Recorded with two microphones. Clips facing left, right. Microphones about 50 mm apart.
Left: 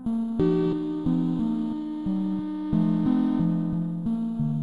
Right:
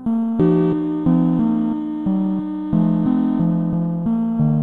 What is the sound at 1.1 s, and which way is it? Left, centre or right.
Music, right.